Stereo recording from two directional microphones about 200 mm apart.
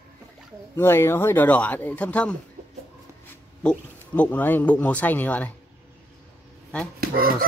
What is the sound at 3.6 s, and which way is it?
Speech, 5° left (ahead or behind).